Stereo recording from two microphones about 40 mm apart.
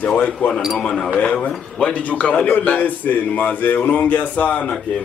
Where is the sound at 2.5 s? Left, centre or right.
Left.